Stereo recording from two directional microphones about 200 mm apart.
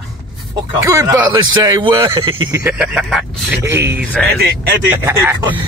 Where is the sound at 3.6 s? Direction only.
10° right (ahead or behind).